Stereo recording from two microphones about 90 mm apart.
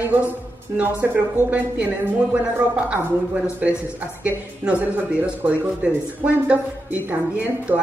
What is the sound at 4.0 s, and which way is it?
A woman's voice, 15° right (ahead or behind).